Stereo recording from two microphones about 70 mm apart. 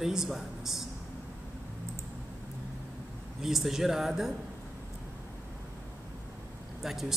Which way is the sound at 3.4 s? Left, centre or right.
Centre.